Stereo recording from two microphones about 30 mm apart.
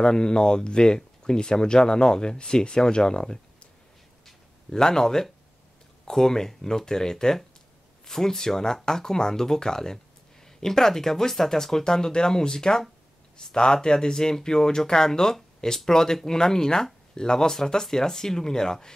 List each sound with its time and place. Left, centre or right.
0.0 s speech: left
4.6 s speech: centre